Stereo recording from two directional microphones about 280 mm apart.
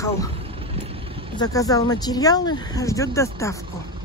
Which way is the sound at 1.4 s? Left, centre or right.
Centre.